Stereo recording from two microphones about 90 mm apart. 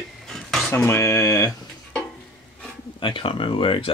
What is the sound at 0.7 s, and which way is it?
Speech, 25° left (ahead or behind).